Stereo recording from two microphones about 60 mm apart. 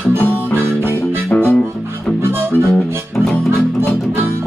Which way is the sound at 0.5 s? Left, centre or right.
Right.